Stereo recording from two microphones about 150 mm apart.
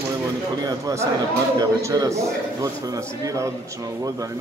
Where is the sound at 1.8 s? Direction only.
25° right (ahead or behind).